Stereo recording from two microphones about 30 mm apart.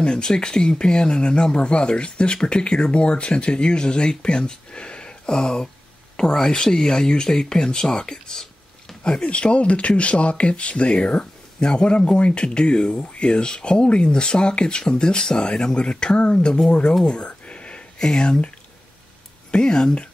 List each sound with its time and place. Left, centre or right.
0.0 s speech: left
9.2 s speech: left
17.5 s a sound: left
17.9 s speech: left
19.5 s speech: left